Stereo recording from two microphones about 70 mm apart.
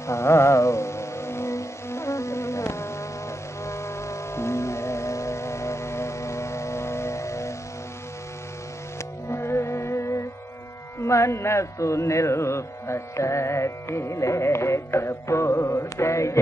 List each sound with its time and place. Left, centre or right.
0.0 s music: left
9.3 s music: left